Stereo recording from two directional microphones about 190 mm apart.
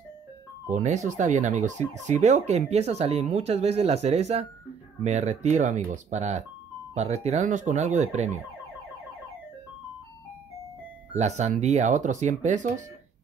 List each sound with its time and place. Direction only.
0.7 s speech: 40° right (ahead or behind)
11.1 s speech: 35° right (ahead or behind)